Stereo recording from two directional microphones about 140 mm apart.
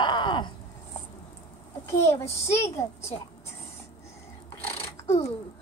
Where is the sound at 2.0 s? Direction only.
20° left (ahead or behind).